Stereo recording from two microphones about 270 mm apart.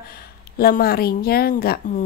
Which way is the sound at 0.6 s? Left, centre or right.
Left.